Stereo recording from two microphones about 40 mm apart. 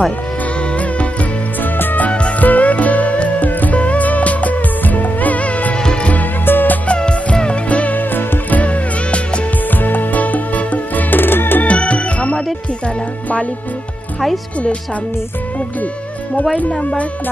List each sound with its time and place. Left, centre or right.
1.6 s music: left
2.0 s music: left
2.4 s music: left
6.4 s music: left
6.9 s music: left
9.8 s music: left
11.6 s music: left
16.5 s speech: left